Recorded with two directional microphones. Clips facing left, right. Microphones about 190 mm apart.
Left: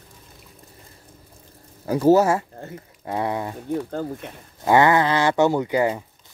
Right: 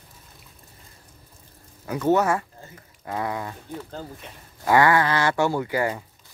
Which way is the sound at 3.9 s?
55° left (ahead or behind).